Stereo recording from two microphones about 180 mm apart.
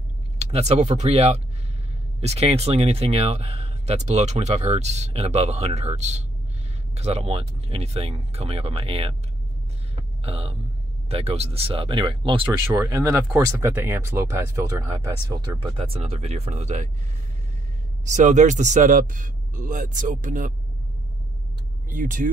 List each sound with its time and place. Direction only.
0.4 s speech: 35° right (ahead or behind)
10.2 s speech: 35° right (ahead or behind)
12.7 s speech: 15° right (ahead or behind); by 16.9 s 40° right (ahead or behind)
18.0 s a man's voice: 40° right (ahead or behind)
21.8 s speech: 45° right (ahead or behind)